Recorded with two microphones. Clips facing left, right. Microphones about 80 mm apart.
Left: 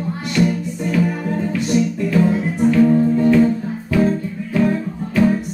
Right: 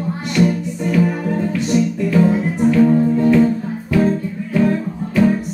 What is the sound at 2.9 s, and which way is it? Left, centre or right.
Music, centre.